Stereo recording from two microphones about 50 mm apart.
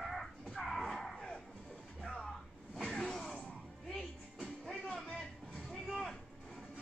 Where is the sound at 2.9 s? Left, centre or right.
Centre.